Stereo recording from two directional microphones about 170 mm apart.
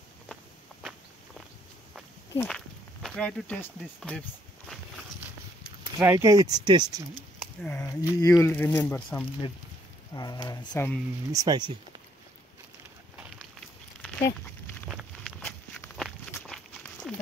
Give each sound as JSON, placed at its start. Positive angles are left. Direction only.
{"t": 2.4, "sound": "speech", "side_deg": 0}
{"t": 5.9, "sound": "speech", "side_deg": -15}
{"t": 7.6, "sound": "speech", "side_deg": 15}
{"t": 10.1, "sound": "speech", "side_deg": 25}
{"t": 10.7, "sound": "speech", "side_deg": 10}
{"t": 11.3, "sound": "speech", "side_deg": -25}
{"t": 13.6, "sound": "a sound", "side_deg": 5}
{"t": 14.9, "sound": "walk", "side_deg": -5}
{"t": 15.4, "sound": "walk", "side_deg": 10}
{"t": 17.1, "sound": "a sound", "side_deg": 0}